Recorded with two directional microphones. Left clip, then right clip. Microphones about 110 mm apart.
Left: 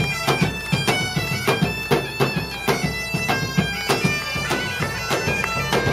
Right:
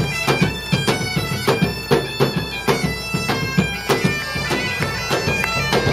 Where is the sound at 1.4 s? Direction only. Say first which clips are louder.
Right 2 dB; 25° left (ahead or behind).